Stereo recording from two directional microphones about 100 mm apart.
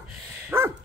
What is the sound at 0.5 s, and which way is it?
Dog, 25° right (ahead or behind).